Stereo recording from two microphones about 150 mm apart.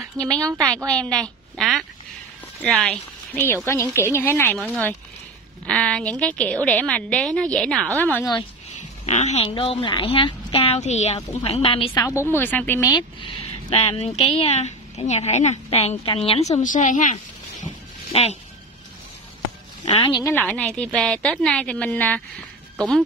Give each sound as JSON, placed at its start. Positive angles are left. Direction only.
{"t": 0.2, "sound": "a woman's voice", "side_deg": 5}
{"t": 9.0, "sound": "speech", "side_deg": 50}
{"t": 9.5, "sound": "a woman's voice", "side_deg": 35}
{"t": 11.9, "sound": "a woman's voice", "side_deg": 20}
{"t": 12.9, "sound": "speech", "side_deg": 35}
{"t": 16.6, "sound": "speech", "side_deg": 60}
{"t": 18.1, "sound": "speech", "side_deg": 45}
{"t": 19.8, "sound": "a woman's voice", "side_deg": 30}
{"t": 20.3, "sound": "a woman's voice", "side_deg": 5}